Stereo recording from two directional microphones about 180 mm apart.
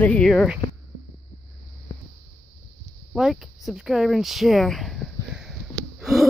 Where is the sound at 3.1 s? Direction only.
Centre (ahead or behind).